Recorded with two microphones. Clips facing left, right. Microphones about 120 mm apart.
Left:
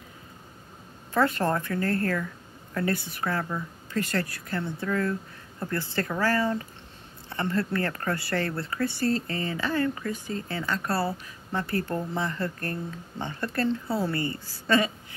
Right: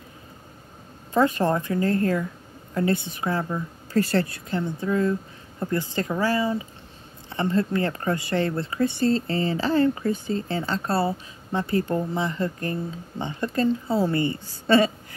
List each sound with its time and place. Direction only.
1.1 s a woman's voice: 15° right (ahead or behind)
3.9 s a woman's voice: 35° right (ahead or behind)